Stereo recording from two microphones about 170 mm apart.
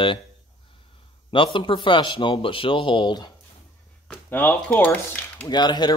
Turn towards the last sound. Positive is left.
turn(degrees=25)  # may be behind; listen again after turning